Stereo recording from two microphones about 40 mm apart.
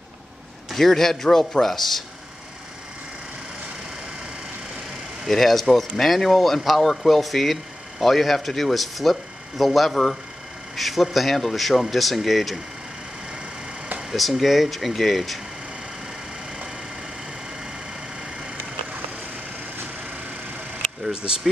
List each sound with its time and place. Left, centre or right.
0.7 s a man's voice: centre
5.3 s speech: centre
14.1 s speech: centre
18.2 s vehicle: right
21.0 s a sound: right